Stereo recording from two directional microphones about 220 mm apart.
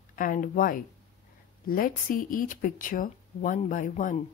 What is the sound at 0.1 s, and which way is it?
A woman's voice, 40° left (ahead or behind).